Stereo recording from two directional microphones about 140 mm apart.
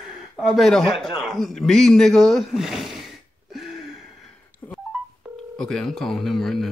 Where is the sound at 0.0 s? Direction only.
Centre (ahead or behind).